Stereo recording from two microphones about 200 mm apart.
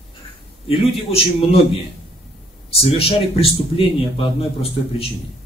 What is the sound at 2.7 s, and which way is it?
Speech, 30° left (ahead or behind).